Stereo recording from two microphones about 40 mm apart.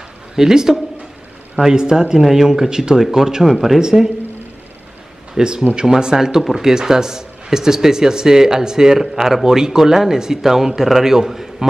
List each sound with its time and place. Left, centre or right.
0.4 s a man's voice: centre
3.4 s speech: centre
3.8 s a man's voice: centre
5.4 s a man's voice: right